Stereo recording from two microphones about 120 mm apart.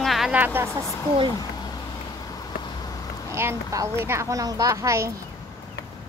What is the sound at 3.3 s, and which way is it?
Speech, 20° right (ahead or behind).